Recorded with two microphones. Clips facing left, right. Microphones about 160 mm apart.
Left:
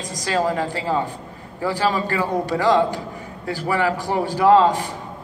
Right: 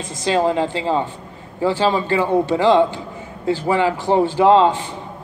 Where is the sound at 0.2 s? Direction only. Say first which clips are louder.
Right 4 dB; 20° right (ahead or behind).